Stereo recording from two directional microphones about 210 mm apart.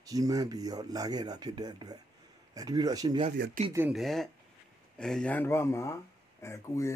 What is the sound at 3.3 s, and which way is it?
Speech, 40° right (ahead or behind).